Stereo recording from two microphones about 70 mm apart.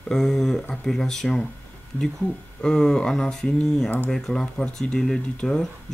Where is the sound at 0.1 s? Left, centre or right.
Centre.